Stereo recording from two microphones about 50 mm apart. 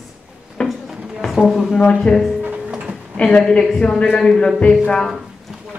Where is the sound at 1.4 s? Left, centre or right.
Centre.